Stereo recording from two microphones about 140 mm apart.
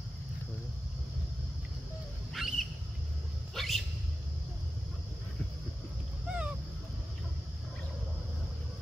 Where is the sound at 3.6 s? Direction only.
Centre (ahead or behind).